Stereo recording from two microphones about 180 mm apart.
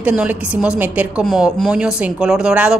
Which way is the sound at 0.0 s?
10° right (ahead or behind).